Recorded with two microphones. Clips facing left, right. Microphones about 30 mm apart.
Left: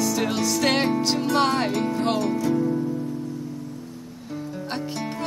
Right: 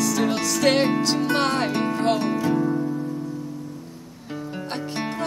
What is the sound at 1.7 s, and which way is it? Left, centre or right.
Music, right.